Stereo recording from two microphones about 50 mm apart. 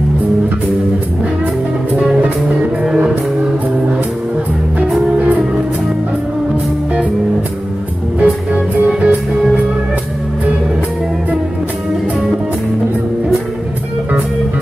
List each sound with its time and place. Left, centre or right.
2.0 s music: centre
8.2 s music: right